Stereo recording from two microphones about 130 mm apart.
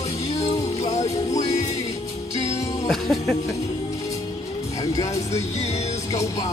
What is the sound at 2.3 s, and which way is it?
Music, 55° left (ahead or behind).